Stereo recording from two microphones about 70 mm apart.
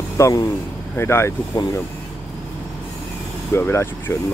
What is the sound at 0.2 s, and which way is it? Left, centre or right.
Speech, left.